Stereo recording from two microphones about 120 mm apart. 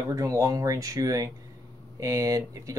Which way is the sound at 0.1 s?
30° right (ahead or behind).